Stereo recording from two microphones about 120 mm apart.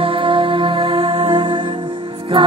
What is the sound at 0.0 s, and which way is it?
Music, 50° right (ahead or behind).